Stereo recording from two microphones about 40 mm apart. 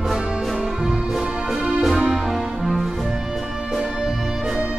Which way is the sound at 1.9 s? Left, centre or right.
Centre.